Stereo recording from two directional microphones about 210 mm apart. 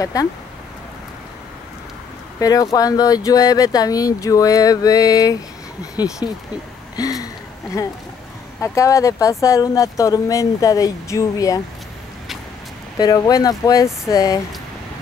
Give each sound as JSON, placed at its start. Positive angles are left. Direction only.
{"t": 0.0, "sound": "speech", "side_deg": 15}
{"t": 2.4, "sound": "speech", "side_deg": 15}
{"t": 7.0, "sound": "a sound", "side_deg": 15}
{"t": 8.5, "sound": "speech", "side_deg": 15}
{"t": 12.9, "sound": "speech", "side_deg": 20}